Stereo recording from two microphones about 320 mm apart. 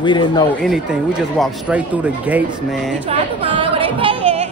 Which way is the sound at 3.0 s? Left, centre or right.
Centre.